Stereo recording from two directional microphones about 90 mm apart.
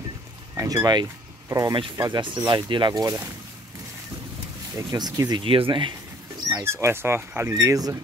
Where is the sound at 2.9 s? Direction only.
40° right (ahead or behind).